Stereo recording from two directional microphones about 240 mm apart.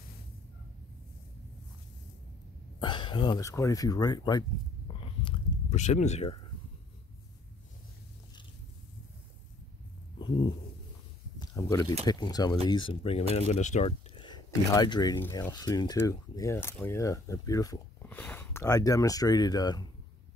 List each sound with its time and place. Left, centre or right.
2.8 s speech: centre
11.3 s speech: centre